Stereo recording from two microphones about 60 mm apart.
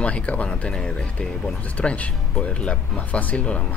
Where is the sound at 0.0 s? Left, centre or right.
Left.